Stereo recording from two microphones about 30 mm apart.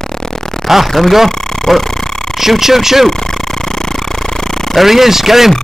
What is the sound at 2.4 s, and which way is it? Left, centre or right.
Speech, centre.